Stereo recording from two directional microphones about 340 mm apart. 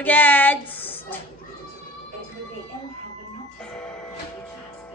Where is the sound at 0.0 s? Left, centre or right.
Centre.